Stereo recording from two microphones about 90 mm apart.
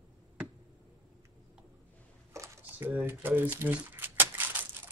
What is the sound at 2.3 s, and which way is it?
Computer keyboard, 35° right (ahead or behind).